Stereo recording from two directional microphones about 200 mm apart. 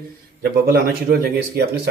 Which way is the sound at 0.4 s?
50° right (ahead or behind).